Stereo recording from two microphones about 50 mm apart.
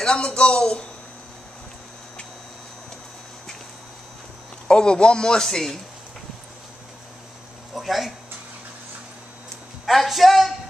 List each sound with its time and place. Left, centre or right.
0.0 s speech: centre
4.6 s a man's voice: centre
7.7 s speech: centre
9.8 s speech: centre